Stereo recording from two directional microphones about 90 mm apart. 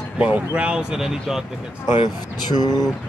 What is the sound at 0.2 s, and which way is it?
Speech, 15° right (ahead or behind).